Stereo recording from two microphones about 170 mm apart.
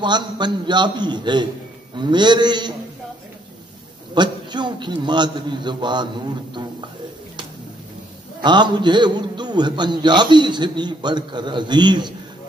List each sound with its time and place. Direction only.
0.0 s a man's voice: 25° right (ahead or behind)
4.1 s a man's voice: 25° right (ahead or behind)
8.4 s a man's voice: 25° right (ahead or behind)